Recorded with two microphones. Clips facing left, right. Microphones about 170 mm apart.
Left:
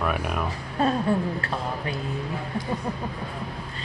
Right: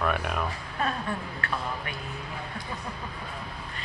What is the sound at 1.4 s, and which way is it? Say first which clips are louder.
Speech: left 3 dB; 30° left (ahead or behind).